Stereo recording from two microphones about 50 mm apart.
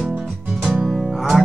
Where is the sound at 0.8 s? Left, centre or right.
Centre.